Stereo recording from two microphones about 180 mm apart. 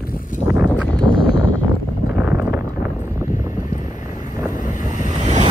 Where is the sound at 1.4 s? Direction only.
90° left.